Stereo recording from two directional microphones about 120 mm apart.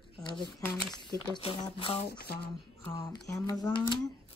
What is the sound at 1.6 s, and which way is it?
Speech, 40° left (ahead or behind).